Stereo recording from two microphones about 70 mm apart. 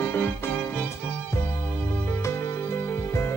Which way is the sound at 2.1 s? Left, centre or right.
Left.